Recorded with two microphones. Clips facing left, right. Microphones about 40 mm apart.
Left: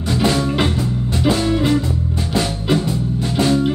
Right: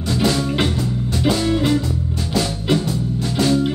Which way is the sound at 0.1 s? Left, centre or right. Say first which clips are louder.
Left 2 dB; left.